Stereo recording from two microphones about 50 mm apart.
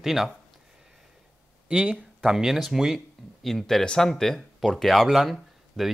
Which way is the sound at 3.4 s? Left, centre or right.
Centre.